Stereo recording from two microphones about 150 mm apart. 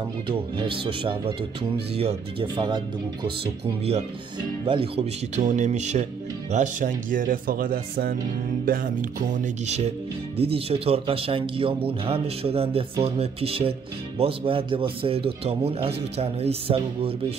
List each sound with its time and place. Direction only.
0.3 s speech: 35° right (ahead or behind)
2.4 s speech: 30° right (ahead or behind)
4.4 s speech: 35° right (ahead or behind)
5.3 s speech: 50° right (ahead or behind); by 8.2 s 90° right
8.6 s speech: 60° right (ahead or behind); by 17.1 s 40° right (ahead or behind)